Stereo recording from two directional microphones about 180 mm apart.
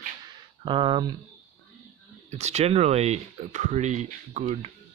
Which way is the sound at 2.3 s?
35° right (ahead or behind).